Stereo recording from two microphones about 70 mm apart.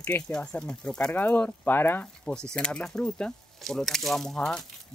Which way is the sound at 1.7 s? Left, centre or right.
Left.